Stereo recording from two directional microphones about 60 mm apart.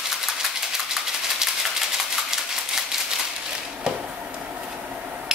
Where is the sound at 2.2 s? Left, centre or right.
Centre.